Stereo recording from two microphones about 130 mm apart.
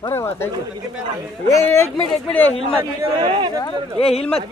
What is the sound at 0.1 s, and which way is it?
Speech, 20° left (ahead or behind).